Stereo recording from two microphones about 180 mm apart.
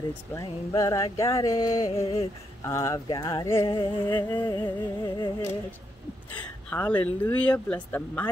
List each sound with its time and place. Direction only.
0.3 s music: 20° left (ahead or behind)
6.4 s speech: 10° left (ahead or behind)